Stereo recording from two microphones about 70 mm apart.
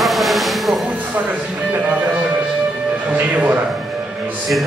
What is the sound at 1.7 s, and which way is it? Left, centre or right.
Music, right.